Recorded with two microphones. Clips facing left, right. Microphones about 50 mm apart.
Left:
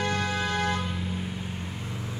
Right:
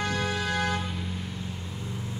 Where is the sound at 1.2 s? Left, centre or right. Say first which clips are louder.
Left 2 dB; left.